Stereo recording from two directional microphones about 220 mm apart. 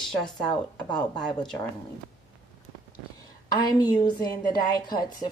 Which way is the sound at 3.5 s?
15° left (ahead or behind).